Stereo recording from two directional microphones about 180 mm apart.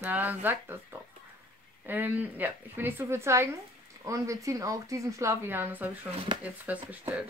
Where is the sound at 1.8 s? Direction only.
10° right (ahead or behind).